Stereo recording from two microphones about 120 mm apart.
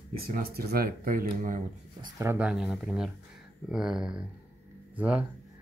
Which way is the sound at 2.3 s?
5° right (ahead or behind).